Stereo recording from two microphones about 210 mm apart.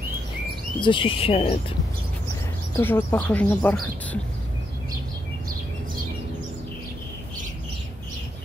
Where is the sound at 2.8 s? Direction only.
10° left (ahead or behind).